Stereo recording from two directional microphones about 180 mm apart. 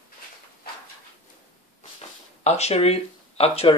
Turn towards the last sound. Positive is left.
turn(degrees=35)  # may be behind; listen again after turning